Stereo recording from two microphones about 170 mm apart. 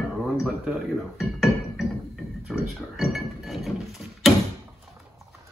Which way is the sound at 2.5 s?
Centre (ahead or behind).